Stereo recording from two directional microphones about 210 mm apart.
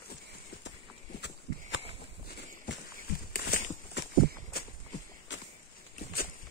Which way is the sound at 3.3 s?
50° left (ahead or behind).